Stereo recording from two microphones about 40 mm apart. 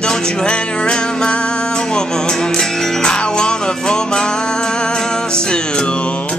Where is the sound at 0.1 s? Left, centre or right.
Centre.